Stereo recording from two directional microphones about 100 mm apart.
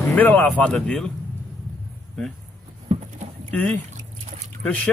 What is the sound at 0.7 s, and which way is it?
Speech, 5° left (ahead or behind).